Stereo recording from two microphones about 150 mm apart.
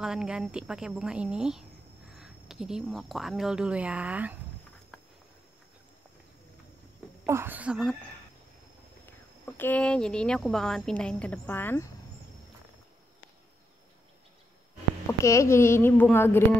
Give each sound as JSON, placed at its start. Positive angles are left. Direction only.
{"t": 0.0, "sound": "speech", "side_deg": -5}
{"t": 7.2, "sound": "speech", "side_deg": -15}
{"t": 9.6, "sound": "a woman's voice", "side_deg": 10}
{"t": 15.0, "sound": "a woman's voice", "side_deg": 20}